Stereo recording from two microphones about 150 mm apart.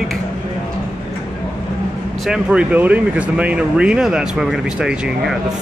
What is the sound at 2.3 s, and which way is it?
Speech, 5° right (ahead or behind).